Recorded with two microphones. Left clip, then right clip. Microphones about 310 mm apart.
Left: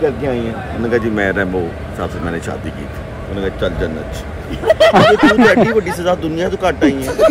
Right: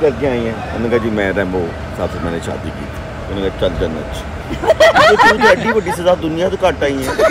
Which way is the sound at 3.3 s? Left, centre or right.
Centre.